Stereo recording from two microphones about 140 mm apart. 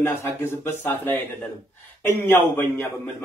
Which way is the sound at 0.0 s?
15° left (ahead or behind).